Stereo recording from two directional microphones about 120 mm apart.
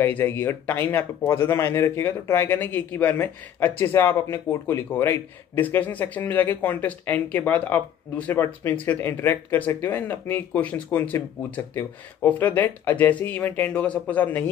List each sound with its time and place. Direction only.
0.0 s speech: 15° left (ahead or behind)